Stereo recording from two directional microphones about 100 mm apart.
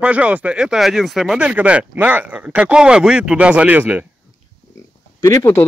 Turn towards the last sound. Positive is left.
turn(degrees=35)  # may be behind; listen again after turning